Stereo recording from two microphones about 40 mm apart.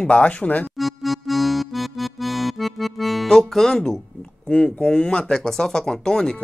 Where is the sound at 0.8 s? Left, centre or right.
Centre.